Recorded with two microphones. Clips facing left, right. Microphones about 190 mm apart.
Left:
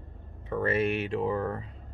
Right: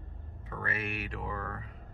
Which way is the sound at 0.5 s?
25° left (ahead or behind).